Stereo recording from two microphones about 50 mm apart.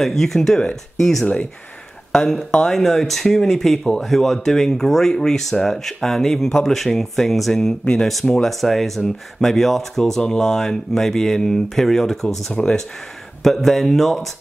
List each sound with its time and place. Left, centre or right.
0.0 s speech: centre
1.2 s speech: left
2.1 s speech: centre